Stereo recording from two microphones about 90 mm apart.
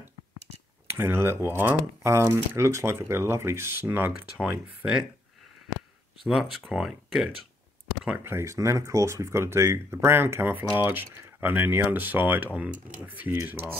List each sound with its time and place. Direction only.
0.9 s speech: 25° right (ahead or behind)
4.1 s speech: 10° right (ahead or behind)
6.2 s speech: 5° right (ahead or behind)
8.2 s speech: 30° right (ahead or behind)